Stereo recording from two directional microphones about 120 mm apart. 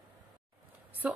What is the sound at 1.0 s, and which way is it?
Speech, 10° right (ahead or behind).